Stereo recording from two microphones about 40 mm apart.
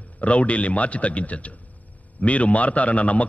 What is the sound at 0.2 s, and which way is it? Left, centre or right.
A man's voice, left.